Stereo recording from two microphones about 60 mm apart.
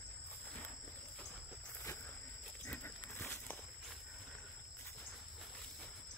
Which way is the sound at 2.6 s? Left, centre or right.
Left.